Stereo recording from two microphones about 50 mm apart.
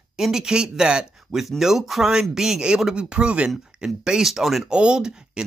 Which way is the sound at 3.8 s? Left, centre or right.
Centre.